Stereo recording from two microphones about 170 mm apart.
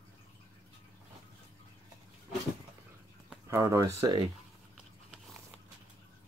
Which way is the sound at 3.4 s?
20° right (ahead or behind).